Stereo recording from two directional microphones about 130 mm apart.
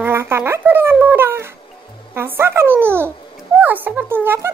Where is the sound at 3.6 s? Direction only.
15° right (ahead or behind).